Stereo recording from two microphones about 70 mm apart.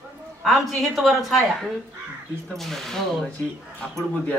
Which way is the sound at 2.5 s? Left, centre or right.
Centre.